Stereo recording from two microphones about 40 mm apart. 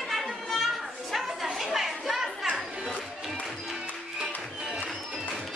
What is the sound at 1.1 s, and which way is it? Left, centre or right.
Music, centre.